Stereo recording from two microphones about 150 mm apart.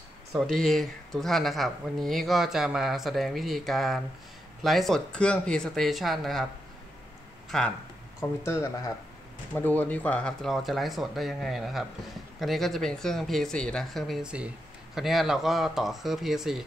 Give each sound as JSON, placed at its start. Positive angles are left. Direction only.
{"t": 0.3, "sound": "speech", "side_deg": 0}
{"t": 7.4, "sound": "speech", "side_deg": 5}
{"t": 8.2, "sound": "speech", "side_deg": 20}